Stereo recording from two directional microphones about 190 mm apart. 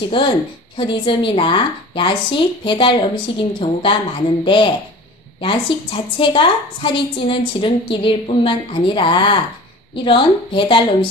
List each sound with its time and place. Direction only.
0.2 s a woman's voice: 25° left (ahead or behind)